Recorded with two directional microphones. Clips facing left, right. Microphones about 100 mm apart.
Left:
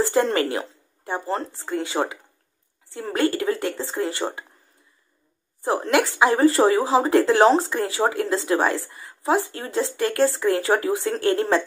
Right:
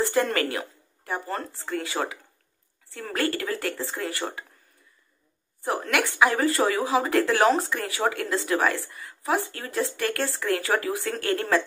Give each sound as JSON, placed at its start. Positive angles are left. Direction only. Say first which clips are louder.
{"t": 0.0, "sound": "speech", "louder": "left 4 dB", "side_deg": 25}
{"t": 5.6, "sound": "speech", "louder": "left 5 dB", "side_deg": 25}